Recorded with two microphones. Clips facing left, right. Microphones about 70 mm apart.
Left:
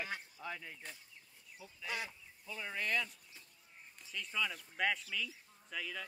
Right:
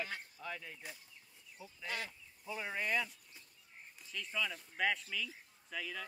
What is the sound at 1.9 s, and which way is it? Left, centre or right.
Speech, centre.